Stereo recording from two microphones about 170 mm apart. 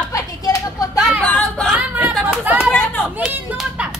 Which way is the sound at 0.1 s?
20° left (ahead or behind).